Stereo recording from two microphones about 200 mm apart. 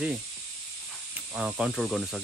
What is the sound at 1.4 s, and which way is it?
Speech, 5° right (ahead or behind).